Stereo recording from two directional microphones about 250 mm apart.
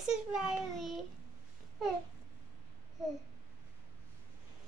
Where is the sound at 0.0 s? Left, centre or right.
Centre.